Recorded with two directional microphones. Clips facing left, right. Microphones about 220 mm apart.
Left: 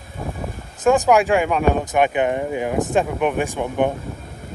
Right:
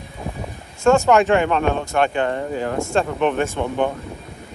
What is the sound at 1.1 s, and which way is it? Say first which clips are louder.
Speech: right 1 dB; 10° left (ahead or behind).